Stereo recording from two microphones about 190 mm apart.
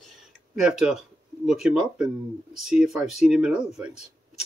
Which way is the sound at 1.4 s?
Centre (ahead or behind).